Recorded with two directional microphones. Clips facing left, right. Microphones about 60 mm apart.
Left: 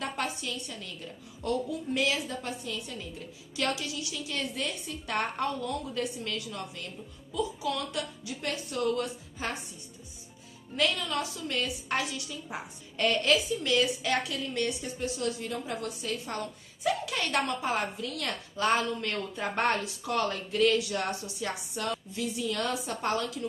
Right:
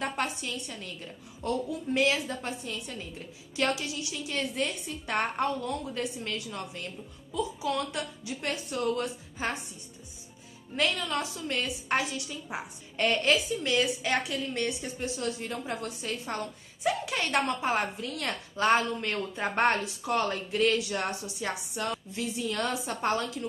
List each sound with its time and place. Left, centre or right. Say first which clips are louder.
0.0 s a sound: right 2 dB; right
1.4 s a woman's voice: even; right
10.8 s a woman's voice: even; right